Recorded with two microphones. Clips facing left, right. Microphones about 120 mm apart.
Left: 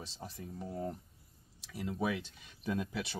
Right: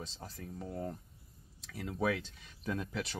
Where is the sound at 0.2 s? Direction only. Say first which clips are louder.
Left 4 dB; 15° left (ahead or behind).